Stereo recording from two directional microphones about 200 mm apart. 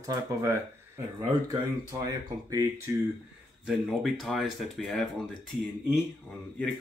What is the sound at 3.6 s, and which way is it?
Speech, centre (ahead or behind).